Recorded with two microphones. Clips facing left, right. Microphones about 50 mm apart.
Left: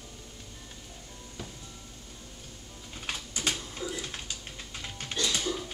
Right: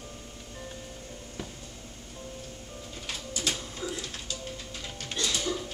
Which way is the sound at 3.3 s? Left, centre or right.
Centre.